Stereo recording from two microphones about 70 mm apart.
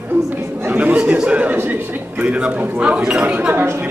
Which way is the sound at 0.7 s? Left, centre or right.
Right.